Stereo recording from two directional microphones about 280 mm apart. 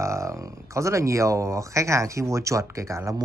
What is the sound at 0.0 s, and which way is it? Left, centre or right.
Speech, centre.